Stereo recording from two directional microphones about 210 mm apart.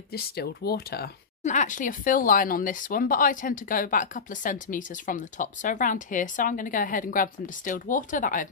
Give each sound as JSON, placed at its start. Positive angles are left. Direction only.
{"t": 0.1, "sound": "speech", "side_deg": 45}
{"t": 1.4, "sound": "speech", "side_deg": 35}